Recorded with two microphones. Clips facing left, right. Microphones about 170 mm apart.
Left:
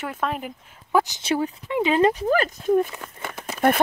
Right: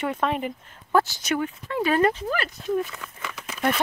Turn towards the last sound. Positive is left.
turn(degrees=50)  # may be behind; listen again after turning